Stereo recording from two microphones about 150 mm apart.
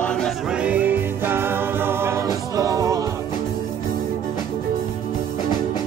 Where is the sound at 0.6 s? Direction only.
10° right (ahead or behind).